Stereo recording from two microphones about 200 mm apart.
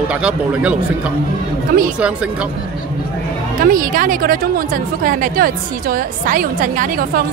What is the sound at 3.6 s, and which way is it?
A woman's voice, 45° right (ahead or behind).